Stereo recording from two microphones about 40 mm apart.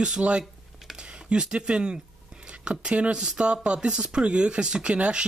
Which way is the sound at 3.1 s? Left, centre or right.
Right.